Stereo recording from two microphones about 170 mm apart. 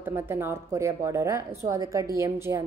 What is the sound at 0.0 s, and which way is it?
A woman's voice, 15° right (ahead or behind).